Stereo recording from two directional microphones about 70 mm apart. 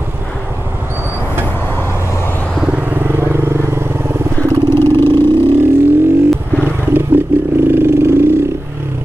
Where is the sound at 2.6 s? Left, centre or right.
Right.